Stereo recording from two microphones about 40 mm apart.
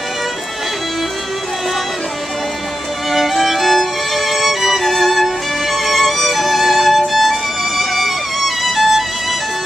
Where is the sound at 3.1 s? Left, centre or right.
Centre.